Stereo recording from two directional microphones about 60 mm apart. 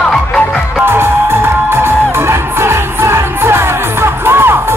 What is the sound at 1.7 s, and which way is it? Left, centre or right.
Music, right.